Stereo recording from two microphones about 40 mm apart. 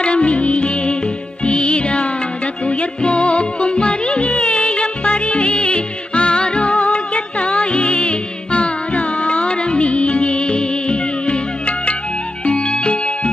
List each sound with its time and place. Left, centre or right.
0.0 s music: left